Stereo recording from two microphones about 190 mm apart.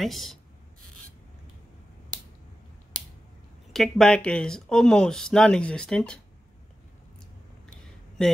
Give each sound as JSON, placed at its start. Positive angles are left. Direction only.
{"t": 0.0, "sound": "speech", "side_deg": 0}
{"t": 3.7, "sound": "speech", "side_deg": 0}